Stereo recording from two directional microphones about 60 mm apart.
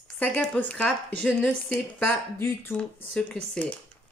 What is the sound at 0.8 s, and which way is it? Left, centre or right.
Speech, centre.